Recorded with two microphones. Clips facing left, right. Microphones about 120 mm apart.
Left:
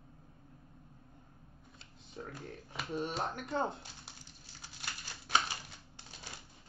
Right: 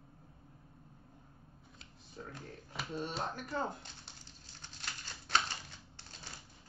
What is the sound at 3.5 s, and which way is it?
Speech, 25° left (ahead or behind).